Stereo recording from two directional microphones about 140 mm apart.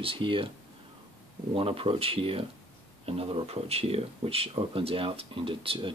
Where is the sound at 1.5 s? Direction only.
40° right (ahead or behind).